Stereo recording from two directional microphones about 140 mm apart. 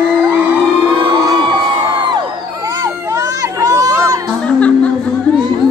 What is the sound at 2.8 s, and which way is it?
Crowd, 25° right (ahead or behind).